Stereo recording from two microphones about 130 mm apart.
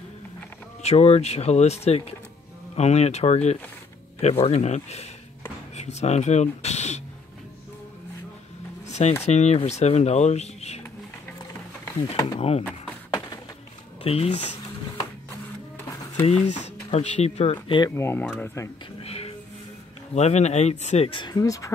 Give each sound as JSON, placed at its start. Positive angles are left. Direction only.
{"t": 0.8, "sound": "speech", "side_deg": 55}
{"t": 8.8, "sound": "a sound", "side_deg": 60}
{"t": 9.2, "sound": "speech", "side_deg": 55}
{"t": 12.4, "sound": "speech", "side_deg": 50}
{"t": 14.0, "sound": "speech", "side_deg": 50}
{"t": 16.3, "sound": "speech", "side_deg": 60}
{"t": 17.8, "sound": "speech", "side_deg": 20}
{"t": 18.2, "sound": "speech", "side_deg": 5}
{"t": 18.9, "sound": "music", "side_deg": 50}
{"t": 20.2, "sound": "speech", "side_deg": 55}
{"t": 21.1, "sound": "speech", "side_deg": 35}